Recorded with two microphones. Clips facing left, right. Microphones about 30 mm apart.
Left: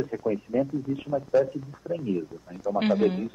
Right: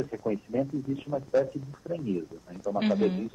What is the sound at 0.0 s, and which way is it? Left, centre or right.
Speech, centre.